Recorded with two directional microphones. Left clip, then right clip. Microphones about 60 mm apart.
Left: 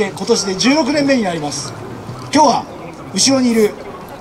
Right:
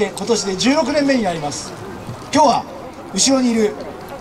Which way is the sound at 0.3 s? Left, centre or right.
Left.